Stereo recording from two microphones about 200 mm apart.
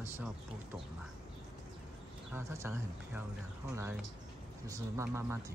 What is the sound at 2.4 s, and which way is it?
Speech, 10° right (ahead or behind).